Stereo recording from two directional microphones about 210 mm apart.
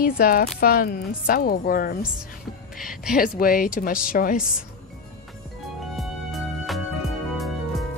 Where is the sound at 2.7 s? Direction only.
Centre (ahead or behind).